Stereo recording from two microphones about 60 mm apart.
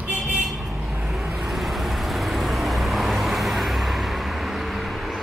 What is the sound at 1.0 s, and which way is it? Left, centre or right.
Vehicle, centre.